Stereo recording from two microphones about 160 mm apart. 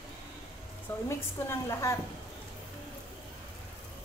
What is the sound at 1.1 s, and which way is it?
Speech, 15° left (ahead or behind).